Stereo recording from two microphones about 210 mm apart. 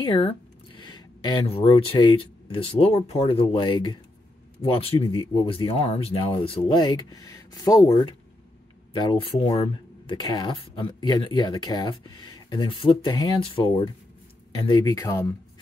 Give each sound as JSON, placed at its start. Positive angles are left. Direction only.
{"t": 0.0, "sound": "speech", "side_deg": 25}